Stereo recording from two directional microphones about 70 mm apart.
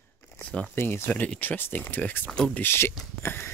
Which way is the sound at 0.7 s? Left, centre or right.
Left.